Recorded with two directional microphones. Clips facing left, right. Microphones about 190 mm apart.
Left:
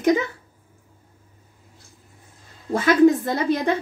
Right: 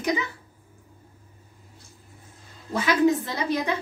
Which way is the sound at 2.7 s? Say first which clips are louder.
Left 6 dB; 50° left (ahead or behind).